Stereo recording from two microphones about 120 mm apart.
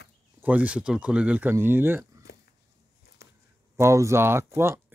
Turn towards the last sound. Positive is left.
turn(degrees=-20)  # may be behind; listen again after turning